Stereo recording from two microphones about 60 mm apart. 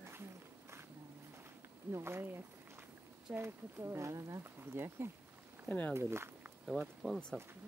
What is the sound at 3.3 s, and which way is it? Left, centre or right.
Speech, right.